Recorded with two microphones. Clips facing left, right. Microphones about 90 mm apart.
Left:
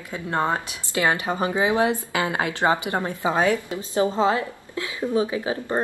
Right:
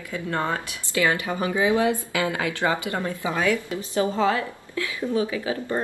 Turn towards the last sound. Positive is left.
turn(degrees=30)  # may be behind; listen again after turning